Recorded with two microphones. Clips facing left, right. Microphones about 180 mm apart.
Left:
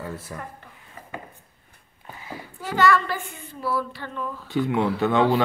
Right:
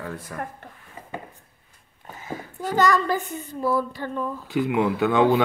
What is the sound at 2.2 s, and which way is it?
A woman's voice, 45° right (ahead or behind).